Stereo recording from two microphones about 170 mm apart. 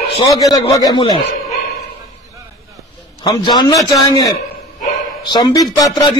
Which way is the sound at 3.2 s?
25° left (ahead or behind).